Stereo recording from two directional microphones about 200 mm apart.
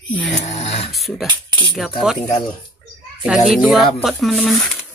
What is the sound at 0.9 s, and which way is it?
Speech, centre (ahead or behind).